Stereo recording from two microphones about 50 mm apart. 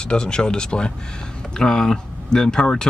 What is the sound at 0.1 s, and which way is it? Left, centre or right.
Speech, centre.